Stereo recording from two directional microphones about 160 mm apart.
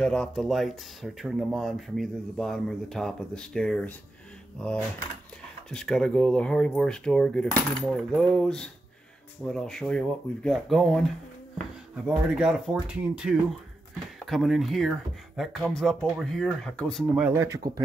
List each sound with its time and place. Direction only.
0.0 s speech: 5° left (ahead or behind)
17.1 s speech: 15° right (ahead or behind)